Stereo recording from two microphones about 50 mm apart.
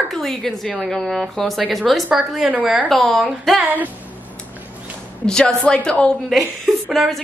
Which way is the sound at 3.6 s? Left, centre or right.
Right.